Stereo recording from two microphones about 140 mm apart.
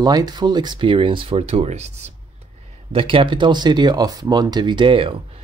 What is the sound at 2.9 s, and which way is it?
Speech, 40° right (ahead or behind).